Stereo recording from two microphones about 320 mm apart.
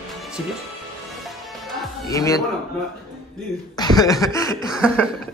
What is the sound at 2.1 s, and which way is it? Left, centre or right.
Speech, centre.